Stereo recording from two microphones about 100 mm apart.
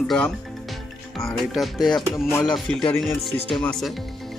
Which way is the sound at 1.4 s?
Centre (ahead or behind).